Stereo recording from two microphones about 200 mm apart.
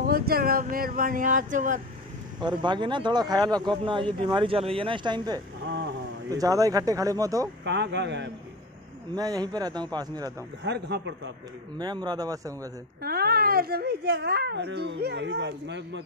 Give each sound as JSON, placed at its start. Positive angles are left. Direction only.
{"t": 0.0, "sound": "speech", "side_deg": -50}
{"t": 2.4, "sound": "speech", "side_deg": -20}
{"t": 7.6, "sound": "a child's voice", "side_deg": -60}
{"t": 9.1, "sound": "speech", "side_deg": -20}
{"t": 10.6, "sound": "a child's voice", "side_deg": -60}
{"t": 11.8, "sound": "speech", "side_deg": -20}
{"t": 13.0, "sound": "a child's voice", "side_deg": -50}